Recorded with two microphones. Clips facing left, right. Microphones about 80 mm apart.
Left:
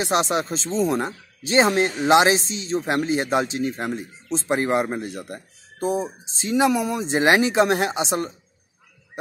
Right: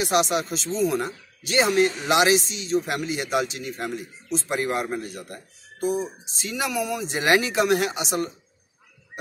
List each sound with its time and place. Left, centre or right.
0.0 s speech: left